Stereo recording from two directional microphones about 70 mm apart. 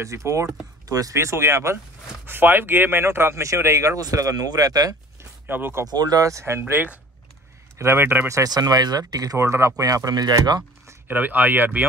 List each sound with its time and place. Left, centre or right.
0.0 s speech: right
0.8 s speech: right
1.1 s speech: right
4.0 s speech: right
5.5 s speech: right
5.9 s speech: right
6.7 s a man's voice: right
8.5 s speech: right
9.4 s speech: right
9.8 s speech: right
11.1 s speech: right